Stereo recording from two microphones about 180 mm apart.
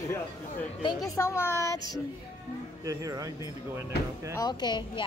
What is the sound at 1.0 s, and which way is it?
Speech, 15° left (ahead or behind).